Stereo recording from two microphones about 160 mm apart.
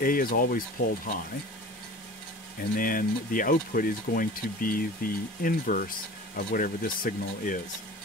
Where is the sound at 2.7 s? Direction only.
60° left (ahead or behind).